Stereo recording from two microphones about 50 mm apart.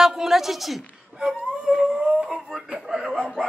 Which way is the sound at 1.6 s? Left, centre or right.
Centre.